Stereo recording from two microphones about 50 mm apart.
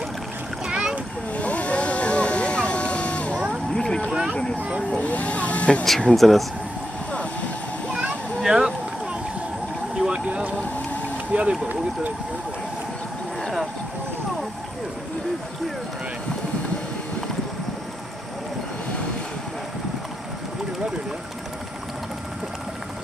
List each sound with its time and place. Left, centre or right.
0.7 s splash: centre
1.3 s vehicle: left
3.7 s a sound: centre
4.1 s a sound: centre
4.9 s vehicle: left
6.1 s speech: centre
8.4 s a sound: centre
9.9 s boat: right
11.3 s speech: centre